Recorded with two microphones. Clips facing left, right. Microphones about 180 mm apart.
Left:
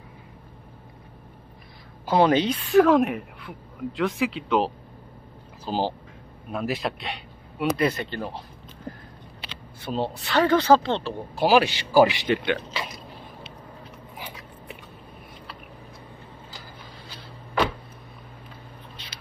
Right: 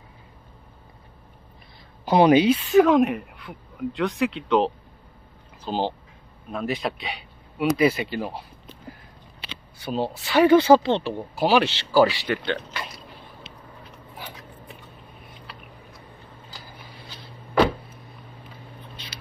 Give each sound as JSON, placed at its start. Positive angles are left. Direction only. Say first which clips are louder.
{"t": 2.0, "sound": "speech", "louder": "right 4 dB", "side_deg": -15}
{"t": 5.7, "sound": "speech", "louder": "even", "side_deg": 5}
{"t": 9.8, "sound": "speech", "louder": "right 1 dB", "side_deg": 0}
{"t": 11.3, "sound": "speech", "louder": "left 1 dB", "side_deg": 5}